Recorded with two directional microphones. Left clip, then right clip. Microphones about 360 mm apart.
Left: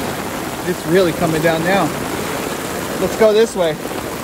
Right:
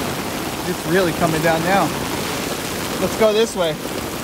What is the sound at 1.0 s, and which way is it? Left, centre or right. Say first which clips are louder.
Speech: left 3 dB; centre.